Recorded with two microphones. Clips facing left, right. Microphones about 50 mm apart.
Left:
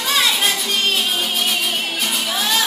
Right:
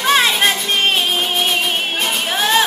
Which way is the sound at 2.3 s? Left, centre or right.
Right.